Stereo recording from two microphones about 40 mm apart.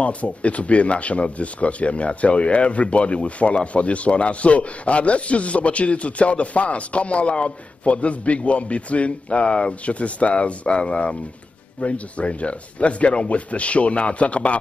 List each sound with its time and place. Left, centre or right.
0.0 s speech: left